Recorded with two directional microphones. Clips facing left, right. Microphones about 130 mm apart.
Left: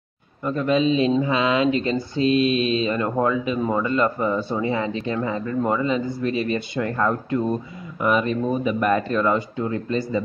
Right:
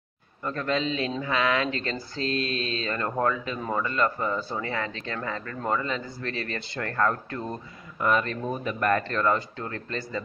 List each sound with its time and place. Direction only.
0.4 s a man's voice: 10° left (ahead or behind)